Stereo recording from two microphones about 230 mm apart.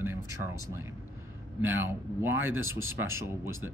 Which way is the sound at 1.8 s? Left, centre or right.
Centre.